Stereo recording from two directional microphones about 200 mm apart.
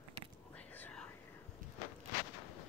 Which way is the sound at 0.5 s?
10° left (ahead or behind).